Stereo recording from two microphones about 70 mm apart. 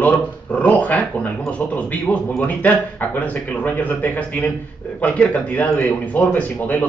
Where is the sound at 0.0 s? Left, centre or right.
Left.